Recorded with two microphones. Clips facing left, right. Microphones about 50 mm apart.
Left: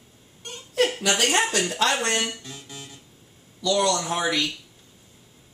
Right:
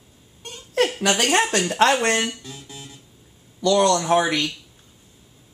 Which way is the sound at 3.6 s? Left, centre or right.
Right.